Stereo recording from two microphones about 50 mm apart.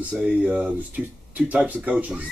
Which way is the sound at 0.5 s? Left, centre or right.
Right.